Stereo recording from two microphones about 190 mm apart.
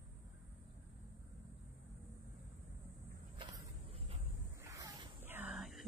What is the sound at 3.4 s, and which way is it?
Walk, 20° right (ahead or behind).